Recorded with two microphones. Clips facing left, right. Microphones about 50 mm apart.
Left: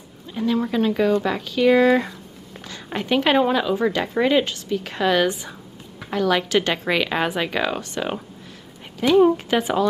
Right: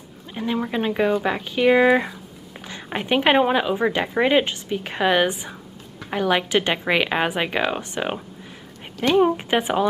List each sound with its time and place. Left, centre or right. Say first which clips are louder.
0.3 s a woman's voice: left 3 dB; right